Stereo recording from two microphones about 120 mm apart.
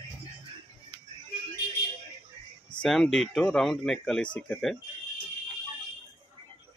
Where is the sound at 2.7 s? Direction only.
5° left (ahead or behind).